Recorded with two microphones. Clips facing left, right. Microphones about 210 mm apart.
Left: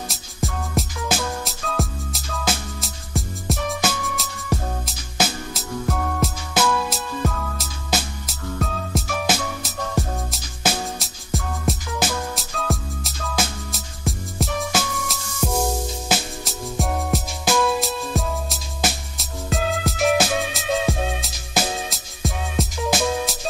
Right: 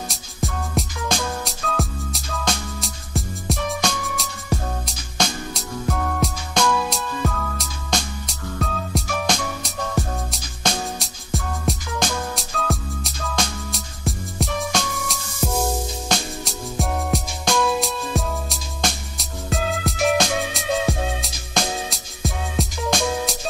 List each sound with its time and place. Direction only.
0.1 s music: centre (ahead or behind)
20.8 s music: 15° left (ahead or behind)
21.2 s music: centre (ahead or behind)